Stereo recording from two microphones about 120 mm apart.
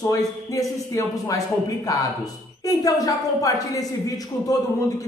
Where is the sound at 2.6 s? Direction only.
30° left (ahead or behind).